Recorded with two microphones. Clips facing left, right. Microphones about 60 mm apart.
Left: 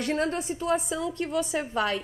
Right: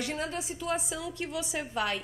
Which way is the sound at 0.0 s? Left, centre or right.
Left.